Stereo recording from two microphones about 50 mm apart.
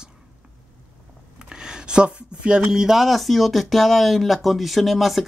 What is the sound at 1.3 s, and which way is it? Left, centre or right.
Speech, centre.